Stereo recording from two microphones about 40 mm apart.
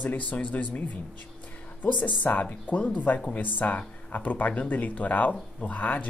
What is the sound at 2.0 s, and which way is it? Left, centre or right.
Speech, left.